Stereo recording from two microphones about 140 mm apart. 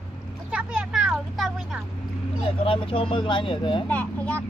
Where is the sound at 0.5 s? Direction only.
10° right (ahead or behind).